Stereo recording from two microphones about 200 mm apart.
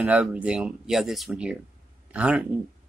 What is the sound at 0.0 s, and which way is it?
Speech, 5° right (ahead or behind).